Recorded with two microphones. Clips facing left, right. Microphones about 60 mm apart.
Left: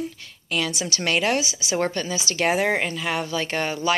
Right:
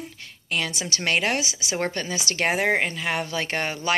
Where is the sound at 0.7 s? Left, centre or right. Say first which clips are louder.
Left 1 dB; right.